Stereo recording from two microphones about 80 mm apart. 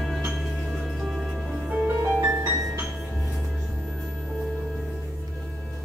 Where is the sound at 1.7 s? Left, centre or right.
Centre.